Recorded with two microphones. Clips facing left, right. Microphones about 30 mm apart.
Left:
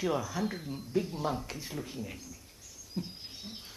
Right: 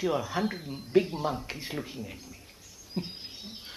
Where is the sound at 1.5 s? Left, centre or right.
Right.